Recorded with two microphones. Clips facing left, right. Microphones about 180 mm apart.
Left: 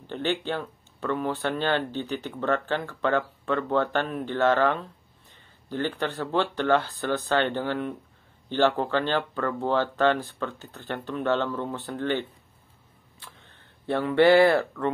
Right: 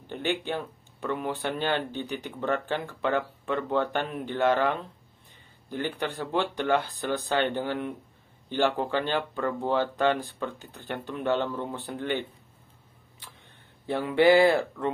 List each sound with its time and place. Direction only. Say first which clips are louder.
0.0 s speech: left 2 dB; 15° right (ahead or behind)